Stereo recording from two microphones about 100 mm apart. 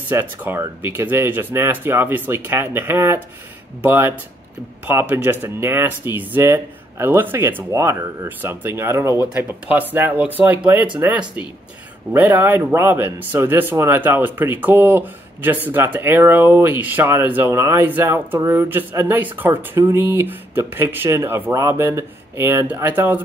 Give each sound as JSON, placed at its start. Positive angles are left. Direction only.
{"t": 0.1, "sound": "speech", "side_deg": -20}